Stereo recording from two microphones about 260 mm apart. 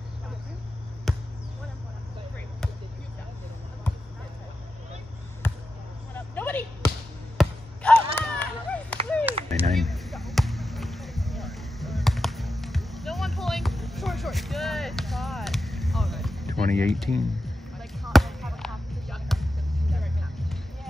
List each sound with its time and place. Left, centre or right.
1.1 s basketball bounce: centre
5.4 s basketball bounce: centre
6.1 s vehicle: centre
7.3 s basketball bounce: centre
9.3 s a sound: right
9.7 s basketball bounce: centre
16.7 s speech: centre
17.7 s basketball bounce: centre